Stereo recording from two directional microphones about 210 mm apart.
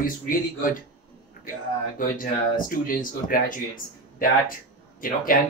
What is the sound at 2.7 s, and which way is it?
Speech, 40° left (ahead or behind).